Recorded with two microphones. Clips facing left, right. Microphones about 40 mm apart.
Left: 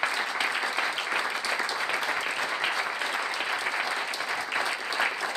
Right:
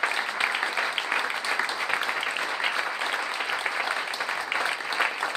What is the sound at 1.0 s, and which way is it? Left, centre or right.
Applause, centre.